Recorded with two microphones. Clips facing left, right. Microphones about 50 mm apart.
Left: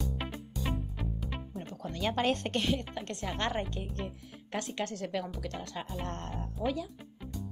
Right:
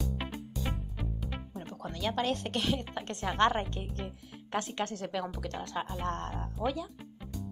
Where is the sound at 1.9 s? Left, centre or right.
Centre.